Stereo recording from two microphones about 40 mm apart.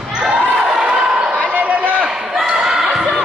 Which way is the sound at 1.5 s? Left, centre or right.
Right.